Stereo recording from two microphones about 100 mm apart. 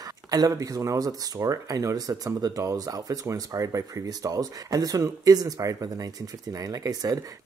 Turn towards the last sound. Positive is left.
turn(degrees=-40)  # may be behind; listen again after turning